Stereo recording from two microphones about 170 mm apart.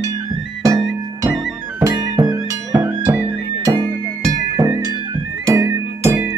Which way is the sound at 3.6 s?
30° right (ahead or behind).